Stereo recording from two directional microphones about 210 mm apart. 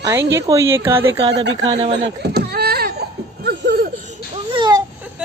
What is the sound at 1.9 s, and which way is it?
Baby cry, 55° right (ahead or behind).